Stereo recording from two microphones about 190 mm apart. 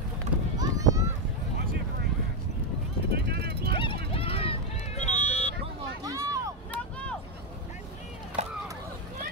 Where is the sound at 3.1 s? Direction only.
60° right (ahead or behind).